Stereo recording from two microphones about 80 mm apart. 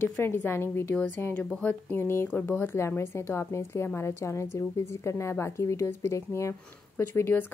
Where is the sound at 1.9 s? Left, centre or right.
Left.